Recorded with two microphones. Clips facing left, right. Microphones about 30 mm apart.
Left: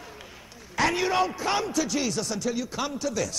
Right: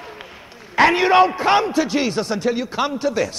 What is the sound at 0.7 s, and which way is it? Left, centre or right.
A man's voice, right.